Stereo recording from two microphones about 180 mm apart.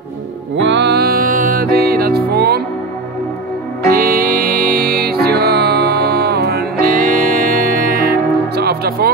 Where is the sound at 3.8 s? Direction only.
55° right (ahead or behind).